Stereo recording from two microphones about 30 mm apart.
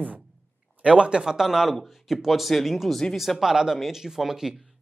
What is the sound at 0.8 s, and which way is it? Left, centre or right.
Speech, right.